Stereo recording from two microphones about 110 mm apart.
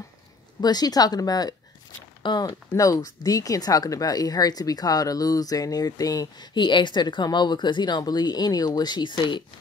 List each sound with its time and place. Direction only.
0.6 s speech: 40° left (ahead or behind)